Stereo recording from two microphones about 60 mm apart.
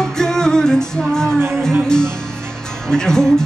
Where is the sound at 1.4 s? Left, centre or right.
Right.